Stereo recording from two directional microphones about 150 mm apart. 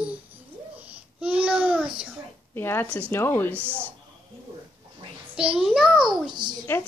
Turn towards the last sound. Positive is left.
turn(degrees=-30)  # may be behind; listen again after turning